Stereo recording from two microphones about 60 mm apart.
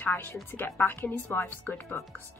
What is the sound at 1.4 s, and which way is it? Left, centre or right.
Speech, left.